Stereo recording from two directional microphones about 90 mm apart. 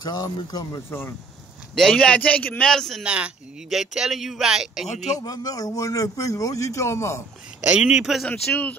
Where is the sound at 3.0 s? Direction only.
10° right (ahead or behind).